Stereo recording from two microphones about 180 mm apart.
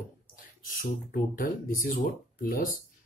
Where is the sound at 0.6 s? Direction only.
50° left (ahead or behind).